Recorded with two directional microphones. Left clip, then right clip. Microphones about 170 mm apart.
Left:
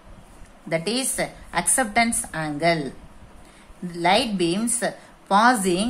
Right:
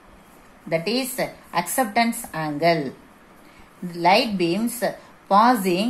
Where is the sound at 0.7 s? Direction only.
Centre (ahead or behind).